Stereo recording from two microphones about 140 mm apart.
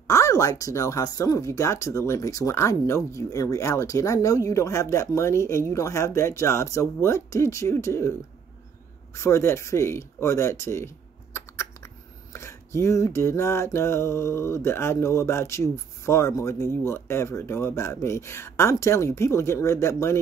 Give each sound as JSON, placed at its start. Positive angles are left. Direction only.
{"t": 0.0, "sound": "speech", "side_deg": 20}